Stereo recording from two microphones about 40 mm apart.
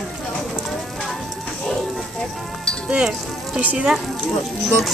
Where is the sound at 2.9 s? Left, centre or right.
Right.